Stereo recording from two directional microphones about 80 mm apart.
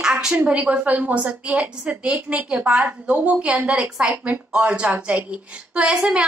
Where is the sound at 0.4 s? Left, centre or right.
Centre.